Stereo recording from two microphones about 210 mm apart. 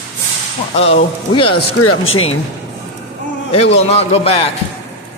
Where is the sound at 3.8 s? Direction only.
30° left (ahead or behind).